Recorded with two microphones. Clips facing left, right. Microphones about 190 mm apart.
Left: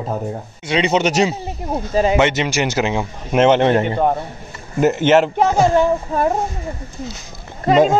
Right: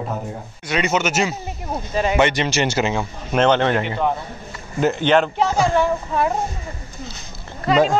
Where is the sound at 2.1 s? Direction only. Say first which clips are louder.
Left 2 dB; 20° left (ahead or behind).